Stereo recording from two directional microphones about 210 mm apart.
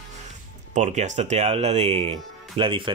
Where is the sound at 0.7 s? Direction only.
35° right (ahead or behind).